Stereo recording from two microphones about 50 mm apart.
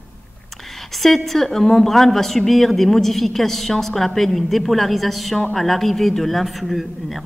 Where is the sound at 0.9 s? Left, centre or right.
Centre.